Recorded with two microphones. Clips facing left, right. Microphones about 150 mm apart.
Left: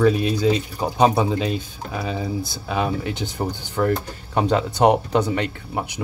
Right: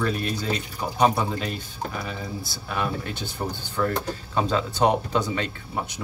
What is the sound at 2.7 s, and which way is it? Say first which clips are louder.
Speech: left 5 dB; 15° left (ahead or behind).